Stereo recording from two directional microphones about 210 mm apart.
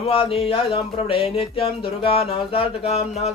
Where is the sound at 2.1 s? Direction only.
25° left (ahead or behind).